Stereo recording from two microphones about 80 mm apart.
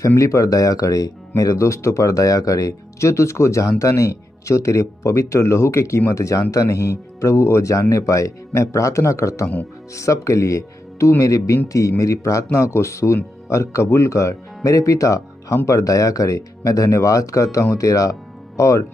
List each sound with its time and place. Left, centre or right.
0.1 s speech: left